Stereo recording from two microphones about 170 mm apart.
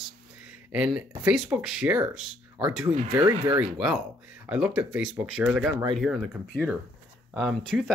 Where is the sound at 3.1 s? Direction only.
20° right (ahead or behind).